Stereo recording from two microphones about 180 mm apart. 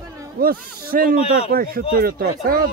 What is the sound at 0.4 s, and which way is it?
Speech, 55° right (ahead or behind).